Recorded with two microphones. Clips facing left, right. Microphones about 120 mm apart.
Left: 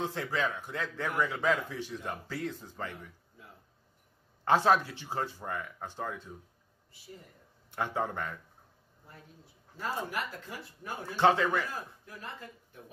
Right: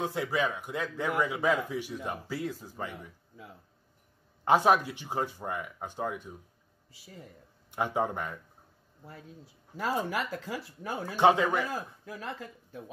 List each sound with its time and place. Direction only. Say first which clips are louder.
0.0 s a man's voice: right 3 dB; 15° right (ahead or behind)
4.5 s a man's voice: right 2 dB; 15° right (ahead or behind)
7.7 s a man's voice: right 3 dB; 15° right (ahead or behind)
9.8 s speech: right 4 dB; 90° right
11.1 s a man's voice: right 2 dB; 15° right (ahead or behind)
11.7 s speech: right 5 dB; 90° right